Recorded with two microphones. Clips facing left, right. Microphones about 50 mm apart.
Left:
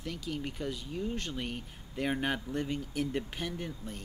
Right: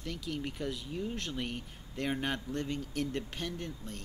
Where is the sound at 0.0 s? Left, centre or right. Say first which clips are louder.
Left 1 dB; centre.